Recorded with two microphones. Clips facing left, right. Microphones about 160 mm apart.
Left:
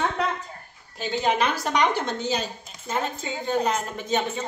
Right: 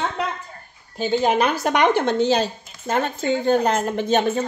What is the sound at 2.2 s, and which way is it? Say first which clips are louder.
A woman's voice: right 7 dB; 70° right (ahead or behind).